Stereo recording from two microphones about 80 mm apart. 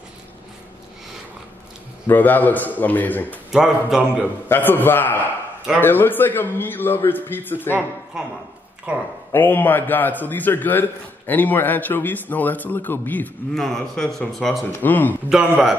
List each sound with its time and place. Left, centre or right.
2.0 s a man's voice: left
3.5 s speech: centre
4.5 s a man's voice: left
8.2 s speech: centre
9.3 s a man's voice: left
13.6 s speech: centre
14.7 s a man's voice: left
15.2 s speech: centre